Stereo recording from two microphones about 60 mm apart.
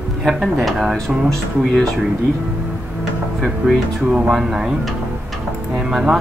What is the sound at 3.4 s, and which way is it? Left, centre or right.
Speech, centre.